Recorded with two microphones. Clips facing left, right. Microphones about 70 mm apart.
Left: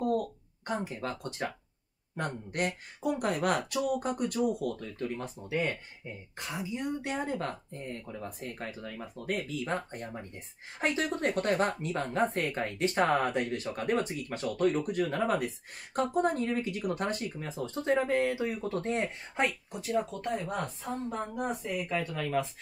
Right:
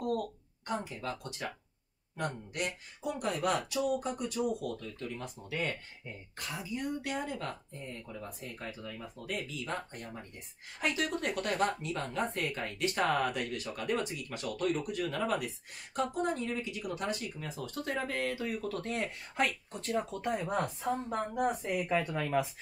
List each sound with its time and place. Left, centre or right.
0.8 s speech: left
4.8 s speech: left
5.4 s speech: left
9.6 s speech: left
15.4 s speech: left
17.4 s speech: left
19.7 s speech: centre
21.5 s speech: centre